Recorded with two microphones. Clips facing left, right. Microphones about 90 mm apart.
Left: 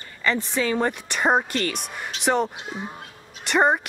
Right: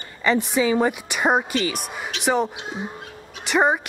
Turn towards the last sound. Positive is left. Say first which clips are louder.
# even
turn(degrees=0)  # may be behind; listen again after turning